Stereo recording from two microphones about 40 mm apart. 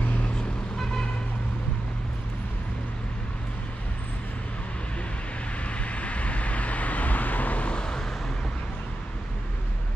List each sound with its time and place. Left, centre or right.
5.6 s vehicle: left
7.7 s vehicle: left